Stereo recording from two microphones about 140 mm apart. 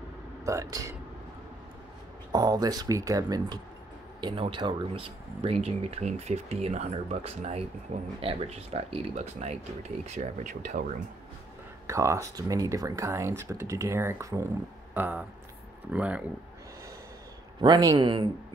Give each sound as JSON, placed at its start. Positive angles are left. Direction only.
{"t": 0.5, "sound": "speech", "side_deg": -25}
{"t": 2.3, "sound": "speech", "side_deg": -30}
{"t": 11.9, "sound": "speech", "side_deg": -20}
{"t": 17.6, "sound": "speech", "side_deg": -30}